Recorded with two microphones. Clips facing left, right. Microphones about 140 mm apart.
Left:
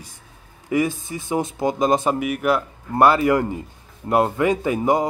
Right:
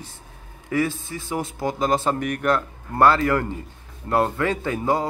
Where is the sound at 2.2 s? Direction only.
5° left (ahead or behind).